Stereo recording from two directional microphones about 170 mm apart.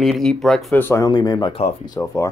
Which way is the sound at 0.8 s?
20° left (ahead or behind).